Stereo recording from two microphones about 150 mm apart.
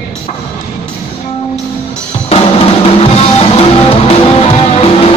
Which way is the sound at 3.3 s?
45° left (ahead or behind).